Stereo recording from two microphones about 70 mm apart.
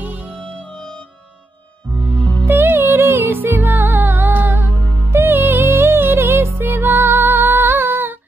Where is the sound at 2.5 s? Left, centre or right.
Right.